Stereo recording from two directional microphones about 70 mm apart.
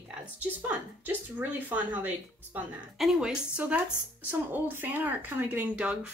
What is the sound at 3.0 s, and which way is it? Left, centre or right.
Speech, centre.